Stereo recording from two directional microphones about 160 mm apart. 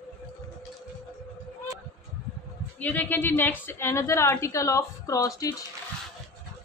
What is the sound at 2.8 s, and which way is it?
A woman's voice, 10° left (ahead or behind).